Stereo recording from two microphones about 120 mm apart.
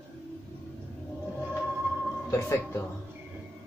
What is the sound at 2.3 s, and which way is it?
Speech, 25° left (ahead or behind).